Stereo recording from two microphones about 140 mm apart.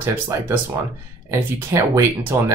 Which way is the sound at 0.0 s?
20° right (ahead or behind).